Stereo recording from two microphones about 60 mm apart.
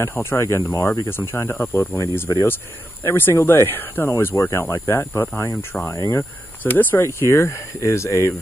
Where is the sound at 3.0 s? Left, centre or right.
Left.